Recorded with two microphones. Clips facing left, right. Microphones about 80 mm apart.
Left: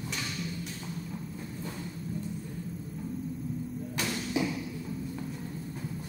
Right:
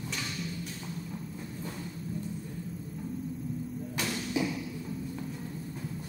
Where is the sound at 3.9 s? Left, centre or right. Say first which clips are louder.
Even; centre.